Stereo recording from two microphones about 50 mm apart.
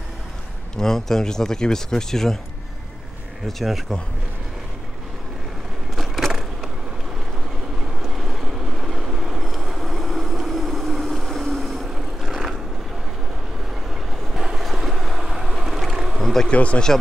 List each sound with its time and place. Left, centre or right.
0.7 s speech: centre
3.4 s speech: centre
5.9 s a sound: centre
8.0 s vehicle: centre
14.3 s boat: centre
16.2 s a sound: centre
16.4 s speech: left